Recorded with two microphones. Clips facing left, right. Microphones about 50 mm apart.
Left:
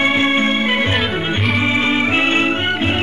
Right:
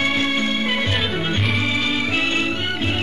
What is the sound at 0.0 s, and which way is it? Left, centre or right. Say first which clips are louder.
Music: left 5 dB; left.